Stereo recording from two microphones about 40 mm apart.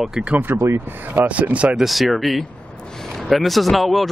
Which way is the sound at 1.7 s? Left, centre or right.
Centre.